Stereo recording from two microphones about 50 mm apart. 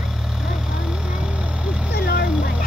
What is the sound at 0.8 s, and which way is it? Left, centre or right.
Vehicle, centre.